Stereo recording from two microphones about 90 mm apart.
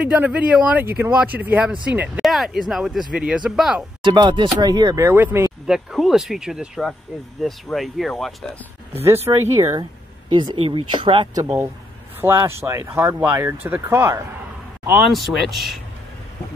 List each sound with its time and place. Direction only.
0.0 s speech: 15° right (ahead or behind)
2.2 s speech: centre (ahead or behind)
4.0 s speech: 55° right (ahead or behind)
5.0 s speech: 25° right (ahead or behind)
5.7 s speech: 5° right (ahead or behind)
9.0 s speech: 30° right (ahead or behind)
10.3 s speech: 55° right (ahead or behind)
10.6 s speech: 70° right (ahead or behind)
12.2 s speech: 30° right (ahead or behind)
15.0 s speech: centre (ahead or behind)